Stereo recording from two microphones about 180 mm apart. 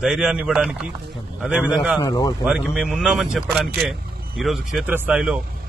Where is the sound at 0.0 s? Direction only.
5° right (ahead or behind).